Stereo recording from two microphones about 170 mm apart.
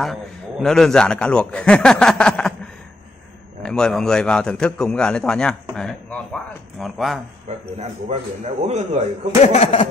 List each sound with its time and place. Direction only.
0.0 s a man's voice: centre (ahead or behind)
3.6 s a man's voice: 5° left (ahead or behind)
7.4 s speech: 40° right (ahead or behind)
9.4 s speech: 35° left (ahead or behind)